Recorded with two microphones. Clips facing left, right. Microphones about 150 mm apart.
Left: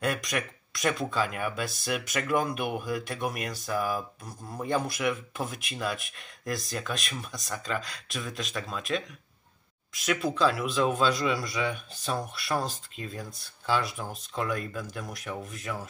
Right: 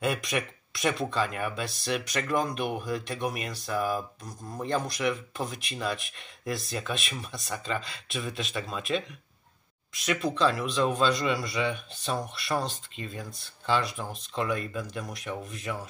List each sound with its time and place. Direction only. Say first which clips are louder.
0.0 s speech: right 1 dB; centre (ahead or behind)